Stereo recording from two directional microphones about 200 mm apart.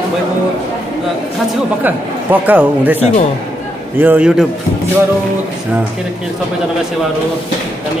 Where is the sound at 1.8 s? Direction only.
10° right (ahead or behind).